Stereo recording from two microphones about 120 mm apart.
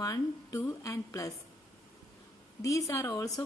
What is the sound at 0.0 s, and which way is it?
A woman's voice, 30° left (ahead or behind).